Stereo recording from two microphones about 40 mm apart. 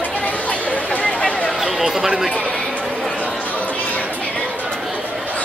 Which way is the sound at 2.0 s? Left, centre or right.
Centre.